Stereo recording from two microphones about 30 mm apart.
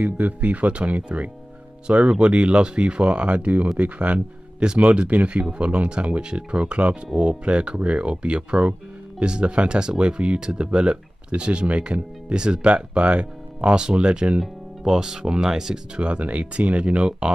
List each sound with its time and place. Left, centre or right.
0.0 s speech: right
1.9 s speech: right
4.6 s speech: right
5.1 s speech: right
14.8 s speech: right
16.0 s speech: right